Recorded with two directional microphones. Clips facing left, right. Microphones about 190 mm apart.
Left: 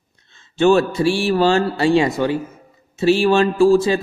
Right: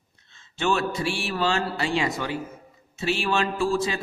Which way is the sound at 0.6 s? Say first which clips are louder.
Left 11 dB; 35° left (ahead or behind).